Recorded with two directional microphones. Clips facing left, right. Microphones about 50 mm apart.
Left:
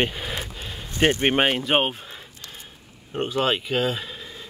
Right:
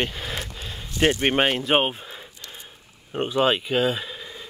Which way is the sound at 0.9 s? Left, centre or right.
Left.